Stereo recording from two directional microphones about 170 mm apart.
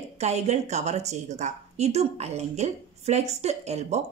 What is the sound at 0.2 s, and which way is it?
A woman's voice, 40° right (ahead or behind).